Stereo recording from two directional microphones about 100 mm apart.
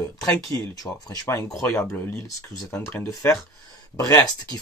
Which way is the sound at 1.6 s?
25° left (ahead or behind).